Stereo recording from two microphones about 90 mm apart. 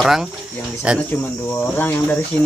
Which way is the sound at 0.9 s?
10° right (ahead or behind).